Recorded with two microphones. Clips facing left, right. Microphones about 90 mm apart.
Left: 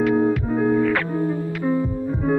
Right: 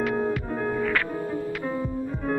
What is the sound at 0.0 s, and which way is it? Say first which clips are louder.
Music: left 7 dB; 5° left (ahead or behind).